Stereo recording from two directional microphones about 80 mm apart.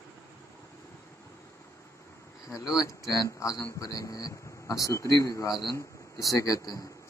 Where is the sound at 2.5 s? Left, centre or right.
Left.